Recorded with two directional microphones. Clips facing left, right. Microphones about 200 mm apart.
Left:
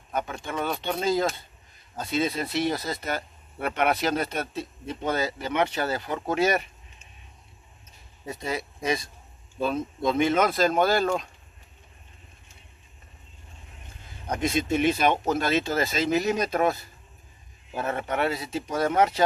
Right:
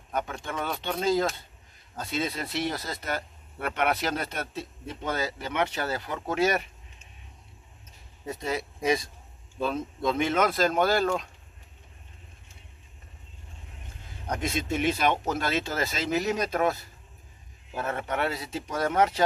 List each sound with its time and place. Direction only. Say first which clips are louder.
0.2 s speech: left 3 dB; 10° left (ahead or behind)
8.5 s speech: right 1 dB; 5° right (ahead or behind)
9.6 s speech: left 2 dB; 10° left (ahead or behind)
14.4 s speech: left 4 dB; 20° left (ahead or behind)
17.7 s speech: left 2 dB; 15° left (ahead or behind)